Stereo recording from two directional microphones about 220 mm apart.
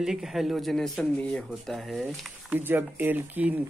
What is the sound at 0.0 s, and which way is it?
Speech, centre (ahead or behind).